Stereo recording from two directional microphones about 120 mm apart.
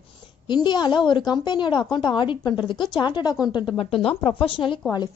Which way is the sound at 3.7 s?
50° left (ahead or behind).